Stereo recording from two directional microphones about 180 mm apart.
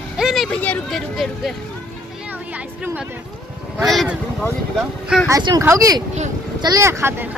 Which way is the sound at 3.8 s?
Centre (ahead or behind).